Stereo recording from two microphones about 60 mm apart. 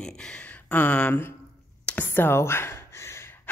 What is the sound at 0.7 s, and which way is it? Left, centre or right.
Speech, left.